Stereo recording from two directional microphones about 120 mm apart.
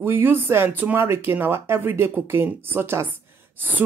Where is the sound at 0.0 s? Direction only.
15° right (ahead or behind).